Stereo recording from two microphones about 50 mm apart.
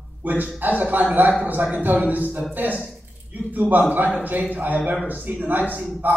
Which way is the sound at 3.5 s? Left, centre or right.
Right.